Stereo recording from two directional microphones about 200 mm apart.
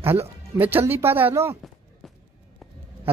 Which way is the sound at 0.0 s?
10° right (ahead or behind).